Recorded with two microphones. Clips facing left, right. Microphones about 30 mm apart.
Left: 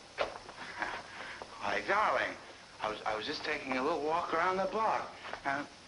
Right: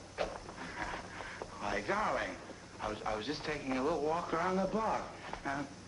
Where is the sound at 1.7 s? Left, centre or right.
Left.